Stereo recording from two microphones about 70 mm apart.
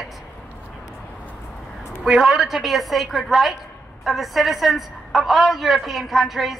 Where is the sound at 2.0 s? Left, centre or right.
Centre.